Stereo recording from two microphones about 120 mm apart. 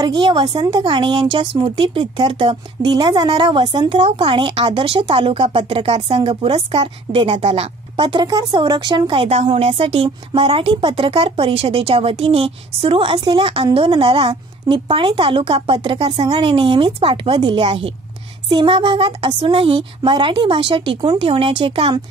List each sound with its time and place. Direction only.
0.0 s a woman's voice: 40° right (ahead or behind)
9.4 s a woman's voice: 60° right (ahead or behind)